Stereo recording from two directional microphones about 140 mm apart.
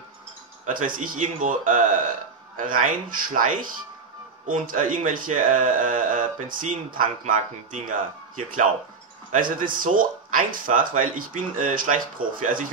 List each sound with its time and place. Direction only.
0.7 s speech: 70° right (ahead or behind)
9.3 s speech: 75° right (ahead or behind)